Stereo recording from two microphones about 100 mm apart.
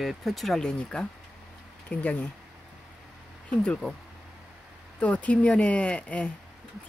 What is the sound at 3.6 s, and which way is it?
Speech, 10° left (ahead or behind).